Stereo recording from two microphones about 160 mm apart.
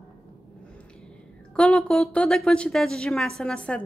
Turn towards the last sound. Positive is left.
turn(degrees=5)  # may be behind; listen again after turning